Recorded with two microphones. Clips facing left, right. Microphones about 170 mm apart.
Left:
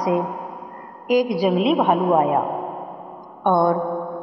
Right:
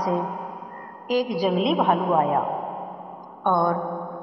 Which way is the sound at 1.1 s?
10° left (ahead or behind).